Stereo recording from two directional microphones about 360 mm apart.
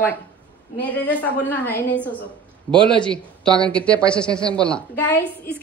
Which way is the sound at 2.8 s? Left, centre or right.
Centre.